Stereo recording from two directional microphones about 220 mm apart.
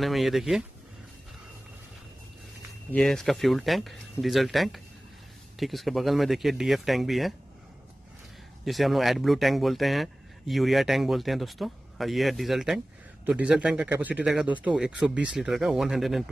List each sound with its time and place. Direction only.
0.0 s speech: centre (ahead or behind)
2.9 s speech: centre (ahead or behind)
8.6 s speech: centre (ahead or behind)